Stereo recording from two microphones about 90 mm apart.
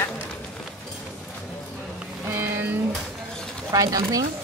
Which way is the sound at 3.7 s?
40° right (ahead or behind).